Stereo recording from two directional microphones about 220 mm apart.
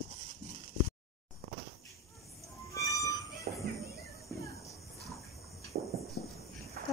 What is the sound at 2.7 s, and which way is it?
Music, 15° left (ahead or behind).